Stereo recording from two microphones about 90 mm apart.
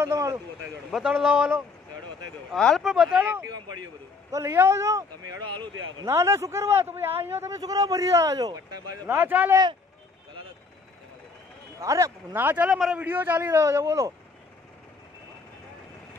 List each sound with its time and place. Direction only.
0.0 s speech: 35° right (ahead or behind)
0.9 s a man's voice: 5° right (ahead or behind)
2.5 s speech: 5° left (ahead or behind)
2.8 s speech: 5° right (ahead or behind)
3.4 s a man's voice: 45° right (ahead or behind)
4.4 s speech: 25° right (ahead or behind)
5.5 s speech: 60° right (ahead or behind)
6.0 s a man's voice: 30° right (ahead or behind)
7.2 s speech: 35° right (ahead or behind)
9.2 s a man's voice: 20° right (ahead or behind)
11.8 s speech: 35° right (ahead or behind)
12.3 s a man's voice: 20° right (ahead or behind)
13.6 s speech: 30° right (ahead or behind)